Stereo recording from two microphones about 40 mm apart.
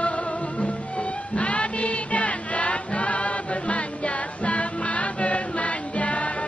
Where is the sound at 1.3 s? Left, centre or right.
Left.